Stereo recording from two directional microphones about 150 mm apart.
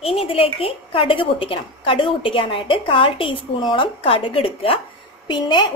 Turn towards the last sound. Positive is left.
turn(degrees=30)  # may be behind; listen again after turning